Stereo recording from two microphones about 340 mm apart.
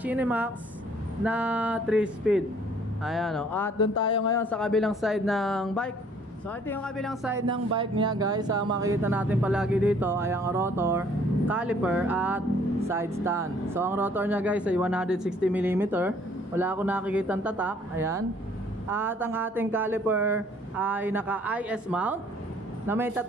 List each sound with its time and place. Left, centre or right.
0.0 s speech: centre